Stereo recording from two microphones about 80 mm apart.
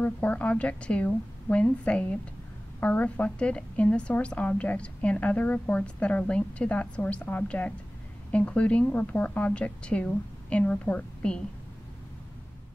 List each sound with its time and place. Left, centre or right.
0.0 s a woman's voice: centre